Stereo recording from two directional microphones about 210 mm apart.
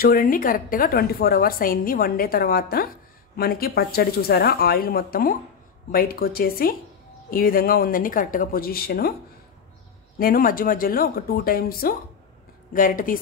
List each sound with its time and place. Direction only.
0.0 s a woman's voice: 40° left (ahead or behind)
10.1 s a woman's voice: 45° left (ahead or behind)